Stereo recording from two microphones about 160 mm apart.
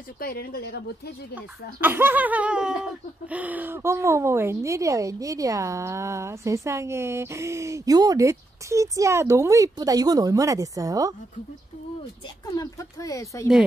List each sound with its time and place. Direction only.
0.2 s speech: 70° left (ahead or behind)
1.3 s speech: 10° right (ahead or behind)
12.4 s speech: 20° left (ahead or behind)